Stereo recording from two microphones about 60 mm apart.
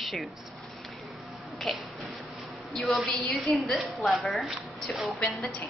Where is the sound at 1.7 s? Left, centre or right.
Centre.